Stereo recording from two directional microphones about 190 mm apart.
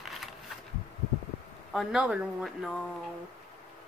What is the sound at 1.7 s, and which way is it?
Speech, 5° right (ahead or behind).